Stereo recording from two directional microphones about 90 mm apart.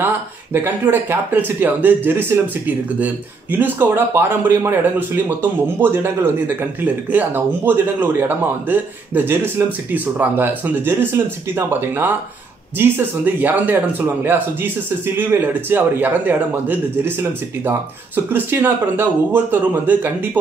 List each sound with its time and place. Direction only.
0.0 s a man's voice: 25° right (ahead or behind)
12.7 s a man's voice: 20° right (ahead or behind)